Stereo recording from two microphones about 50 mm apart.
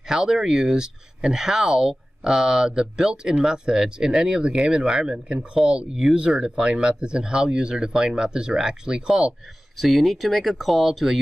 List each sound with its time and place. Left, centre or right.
0.0 s speech: centre
9.8 s speech: centre